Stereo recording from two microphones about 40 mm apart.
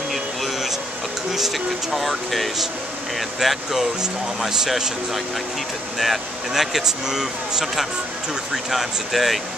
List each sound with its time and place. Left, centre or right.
0.1 s air conditioning: centre
1.3 s speech: centre
5.9 s speech: centre